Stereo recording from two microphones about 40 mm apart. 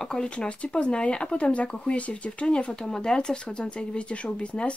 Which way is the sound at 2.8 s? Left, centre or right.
Centre.